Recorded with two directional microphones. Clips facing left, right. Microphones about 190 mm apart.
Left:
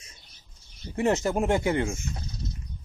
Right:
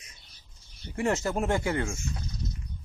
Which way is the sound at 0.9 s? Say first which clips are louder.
Left 3 dB; 20° left (ahead or behind).